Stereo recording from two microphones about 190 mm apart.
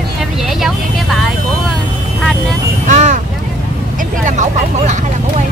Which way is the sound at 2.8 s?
40° right (ahead or behind).